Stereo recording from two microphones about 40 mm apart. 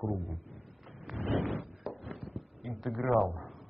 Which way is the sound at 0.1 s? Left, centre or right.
Centre.